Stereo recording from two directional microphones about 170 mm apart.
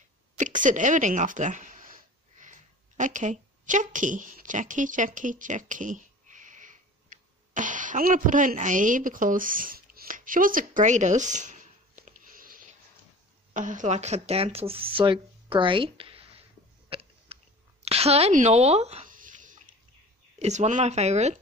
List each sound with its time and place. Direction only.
0.4 s a sound: 50° right (ahead or behind)
13.5 s speech: 50° right (ahead or behind)
16.9 s chewing: 35° right (ahead or behind)
17.8 s speech: 35° right (ahead or behind)
19.1 s a sound: 50° right (ahead or behind)
20.3 s speech: 40° right (ahead or behind)